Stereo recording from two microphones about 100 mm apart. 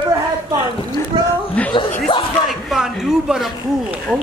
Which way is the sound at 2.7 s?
5° right (ahead or behind).